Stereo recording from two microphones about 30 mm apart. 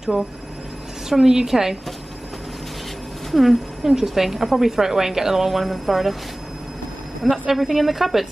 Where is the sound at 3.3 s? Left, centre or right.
Centre.